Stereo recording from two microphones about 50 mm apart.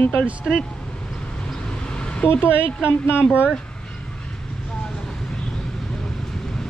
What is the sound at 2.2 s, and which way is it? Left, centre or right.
Speech, left.